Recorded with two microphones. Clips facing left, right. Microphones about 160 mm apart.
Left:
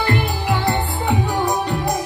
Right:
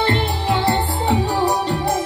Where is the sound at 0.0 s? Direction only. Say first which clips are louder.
Right 1 dB; 25° right (ahead or behind).